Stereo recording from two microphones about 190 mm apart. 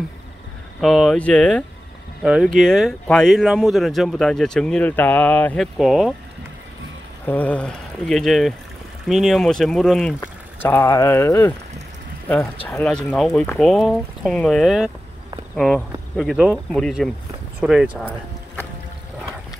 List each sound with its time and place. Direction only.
0.7 s speech: centre (ahead or behind)
7.2 s speech: 10° left (ahead or behind)
12.6 s speech: 5° left (ahead or behind)